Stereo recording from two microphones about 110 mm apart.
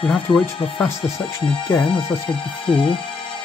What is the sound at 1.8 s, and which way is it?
Music, 50° left (ahead or behind).